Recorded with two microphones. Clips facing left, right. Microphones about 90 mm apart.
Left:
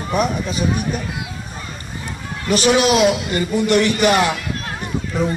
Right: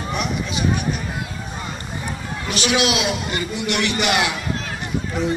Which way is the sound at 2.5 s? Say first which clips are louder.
Left 6 dB; 40° left (ahead or behind).